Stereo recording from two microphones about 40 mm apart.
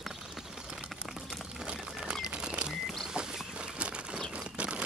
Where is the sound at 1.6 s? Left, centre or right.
Right.